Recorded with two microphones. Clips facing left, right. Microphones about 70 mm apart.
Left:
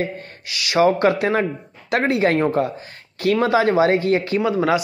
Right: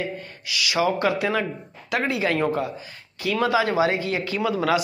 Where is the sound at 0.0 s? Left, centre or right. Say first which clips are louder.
Left 4 dB; left.